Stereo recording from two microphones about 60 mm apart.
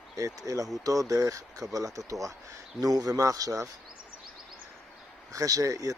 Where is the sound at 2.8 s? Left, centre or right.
Right.